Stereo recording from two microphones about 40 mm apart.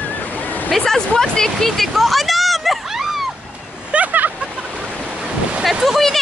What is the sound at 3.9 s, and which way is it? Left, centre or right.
Vehicle, right.